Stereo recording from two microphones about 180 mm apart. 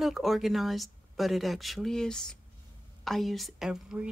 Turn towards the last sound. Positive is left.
turn(degrees=-5)  # may be behind; listen again after turning